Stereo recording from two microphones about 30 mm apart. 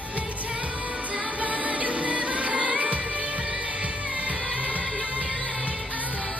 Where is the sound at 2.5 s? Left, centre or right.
Right.